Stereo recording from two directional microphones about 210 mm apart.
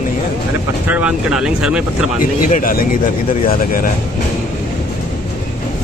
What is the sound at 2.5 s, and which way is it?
Speech, 40° left (ahead or behind).